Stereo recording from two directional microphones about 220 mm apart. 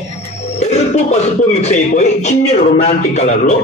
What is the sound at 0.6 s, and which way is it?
Speech, 30° left (ahead or behind).